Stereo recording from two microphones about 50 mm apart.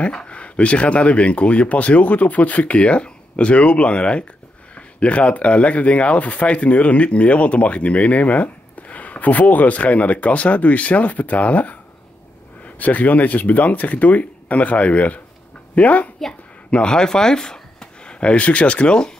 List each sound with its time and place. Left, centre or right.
0.0 s speech: left
16.7 s speech: centre